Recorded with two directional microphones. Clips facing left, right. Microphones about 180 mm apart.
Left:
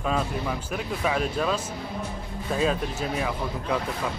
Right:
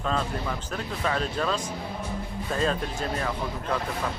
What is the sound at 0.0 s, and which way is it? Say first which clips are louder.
Speech: left 1 dB; 10° left (ahead or behind).